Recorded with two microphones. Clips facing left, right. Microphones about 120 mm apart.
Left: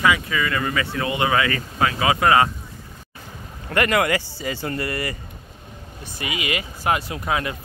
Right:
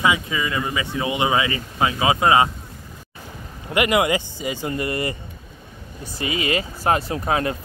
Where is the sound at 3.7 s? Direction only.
15° right (ahead or behind).